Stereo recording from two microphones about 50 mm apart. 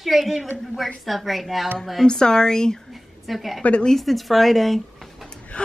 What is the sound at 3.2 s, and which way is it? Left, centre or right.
Speech, centre.